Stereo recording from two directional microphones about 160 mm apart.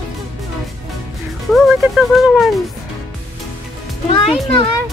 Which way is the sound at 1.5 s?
Centre (ahead or behind).